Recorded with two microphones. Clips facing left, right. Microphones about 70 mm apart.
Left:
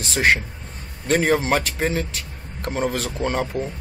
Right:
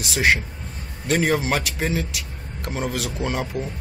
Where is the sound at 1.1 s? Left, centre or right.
Centre.